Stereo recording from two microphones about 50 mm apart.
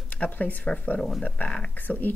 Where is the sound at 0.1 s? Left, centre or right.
Left.